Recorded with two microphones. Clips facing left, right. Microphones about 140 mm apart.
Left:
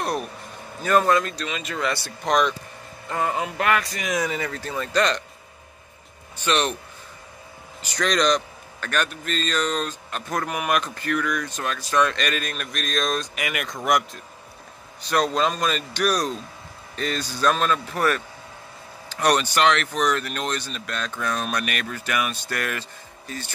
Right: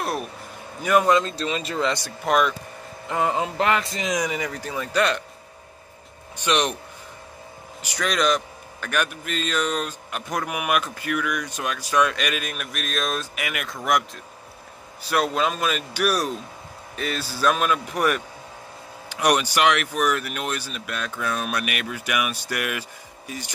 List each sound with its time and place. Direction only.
0.0 s speech: 5° right (ahead or behind)
0.7 s speech: 15° right (ahead or behind)
2.0 s speech: 10° right (ahead or behind)
3.1 s speech: 20° right (ahead or behind)
6.4 s speech: 15° right (ahead or behind)
7.8 s speech: 10° right (ahead or behind)